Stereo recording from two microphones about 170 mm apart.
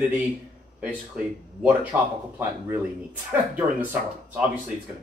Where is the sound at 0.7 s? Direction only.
10° right (ahead or behind).